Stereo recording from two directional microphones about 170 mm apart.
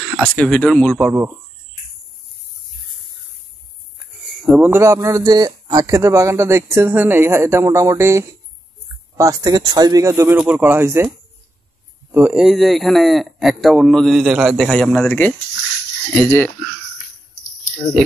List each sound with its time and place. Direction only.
0.3 s speech: 5° left (ahead or behind)
4.2 s a sound: centre (ahead or behind)
4.6 s a man's voice: 15° right (ahead or behind); by 16.5 s 10° left (ahead or behind)